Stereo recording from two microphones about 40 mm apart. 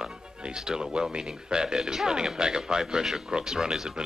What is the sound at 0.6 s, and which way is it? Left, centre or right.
Speech, centre.